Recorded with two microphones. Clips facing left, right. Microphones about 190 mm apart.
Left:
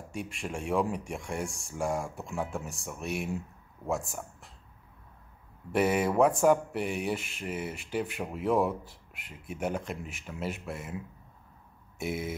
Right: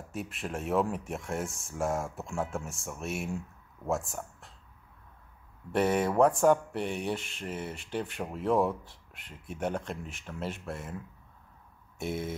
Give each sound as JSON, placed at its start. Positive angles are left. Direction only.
{"t": 0.1, "sound": "speech", "side_deg": -5}
{"t": 5.7, "sound": "speech", "side_deg": 5}
{"t": 12.0, "sound": "speech", "side_deg": 5}